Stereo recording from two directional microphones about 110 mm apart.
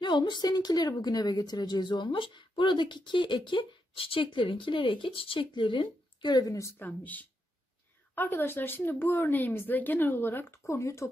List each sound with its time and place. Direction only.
0.0 s a woman's voice: 45° left (ahead or behind)
6.8 s speech: 15° left (ahead or behind)